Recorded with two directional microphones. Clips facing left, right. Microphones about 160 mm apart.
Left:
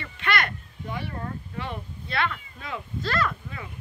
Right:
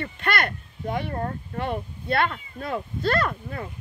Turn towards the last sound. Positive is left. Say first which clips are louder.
# right 1 dB
turn(degrees=-45)  # may be behind; listen again after turning